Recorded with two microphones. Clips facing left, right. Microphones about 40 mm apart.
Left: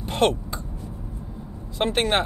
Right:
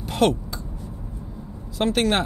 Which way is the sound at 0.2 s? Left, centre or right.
Left.